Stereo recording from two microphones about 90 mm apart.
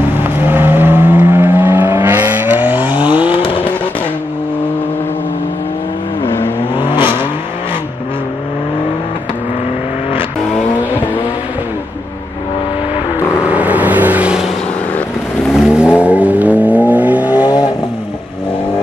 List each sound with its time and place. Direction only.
0.4 s vehicle: 25° right (ahead or behind)
3.1 s vehicle: 70° left (ahead or behind)
6.8 s vehicle: 65° left (ahead or behind)
13.5 s vehicle: 15° right (ahead or behind)
15.5 s vehicle: 10° right (ahead or behind)